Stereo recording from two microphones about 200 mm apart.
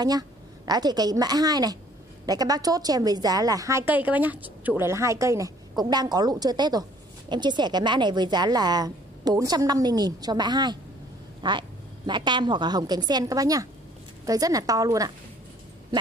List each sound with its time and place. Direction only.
0.7 s a woman's voice: 20° right (ahead or behind)